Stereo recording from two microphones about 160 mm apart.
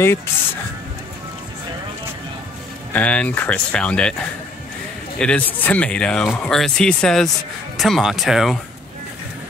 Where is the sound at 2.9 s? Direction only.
10° left (ahead or behind).